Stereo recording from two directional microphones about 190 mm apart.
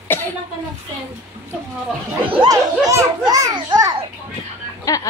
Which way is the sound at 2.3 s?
25° right (ahead or behind).